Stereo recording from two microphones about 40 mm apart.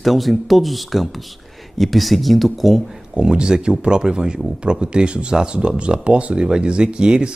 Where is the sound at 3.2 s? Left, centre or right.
Centre.